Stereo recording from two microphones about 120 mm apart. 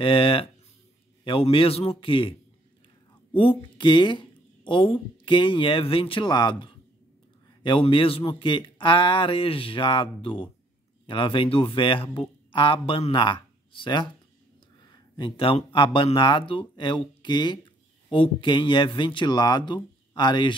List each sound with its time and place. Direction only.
0.0 s speech: 45° left (ahead or behind)
3.3 s speech: 45° left (ahead or behind)
7.8 s speech: 50° left (ahead or behind)